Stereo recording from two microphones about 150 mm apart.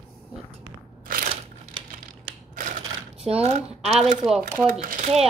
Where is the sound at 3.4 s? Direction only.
45° right (ahead or behind).